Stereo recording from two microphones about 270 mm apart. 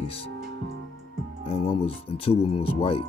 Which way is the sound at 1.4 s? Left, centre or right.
Left.